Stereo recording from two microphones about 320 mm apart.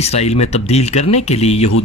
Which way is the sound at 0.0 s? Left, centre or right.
Centre.